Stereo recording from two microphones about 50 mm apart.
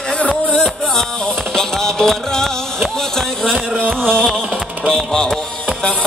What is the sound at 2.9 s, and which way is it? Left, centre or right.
Speech, centre.